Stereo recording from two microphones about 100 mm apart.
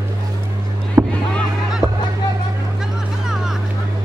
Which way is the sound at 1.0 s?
25° right (ahead or behind).